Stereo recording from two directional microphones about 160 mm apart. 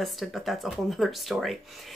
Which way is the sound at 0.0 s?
Centre (ahead or behind).